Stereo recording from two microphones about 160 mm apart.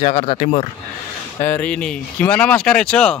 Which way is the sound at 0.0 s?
40° left (ahead or behind).